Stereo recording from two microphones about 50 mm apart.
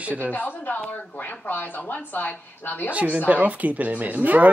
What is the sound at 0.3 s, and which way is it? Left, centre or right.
Speech, left.